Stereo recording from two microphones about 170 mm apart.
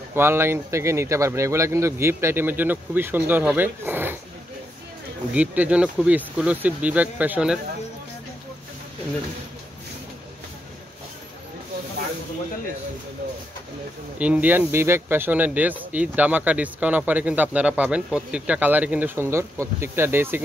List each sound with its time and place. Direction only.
0.1 s speech: 15° right (ahead or behind)
5.3 s speech: 10° right (ahead or behind)
14.1 s speech: 10° right (ahead or behind)